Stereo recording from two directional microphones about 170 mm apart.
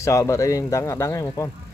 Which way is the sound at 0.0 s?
20° left (ahead or behind).